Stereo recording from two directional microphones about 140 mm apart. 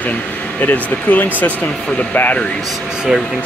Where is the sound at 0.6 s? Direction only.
10° left (ahead or behind).